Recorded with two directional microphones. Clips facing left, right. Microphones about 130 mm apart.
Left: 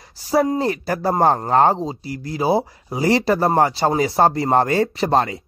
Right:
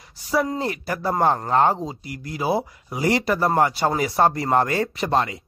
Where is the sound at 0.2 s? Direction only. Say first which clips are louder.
Left 5 dB; 35° left (ahead or behind).